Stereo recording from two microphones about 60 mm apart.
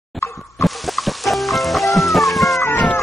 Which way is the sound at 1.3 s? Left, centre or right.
Centre.